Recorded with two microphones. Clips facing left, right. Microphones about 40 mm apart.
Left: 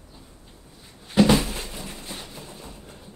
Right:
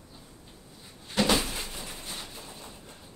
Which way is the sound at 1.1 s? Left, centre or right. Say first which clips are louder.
Left 7 dB; centre.